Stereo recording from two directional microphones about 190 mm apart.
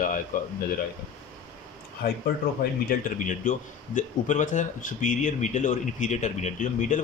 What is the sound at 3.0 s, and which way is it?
A man's voice, 45° left (ahead or behind).